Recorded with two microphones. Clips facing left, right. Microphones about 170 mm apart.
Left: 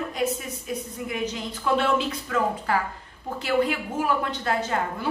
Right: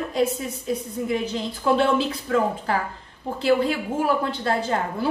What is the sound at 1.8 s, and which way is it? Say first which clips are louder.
Speech: right 3 dB; 30° right (ahead or behind).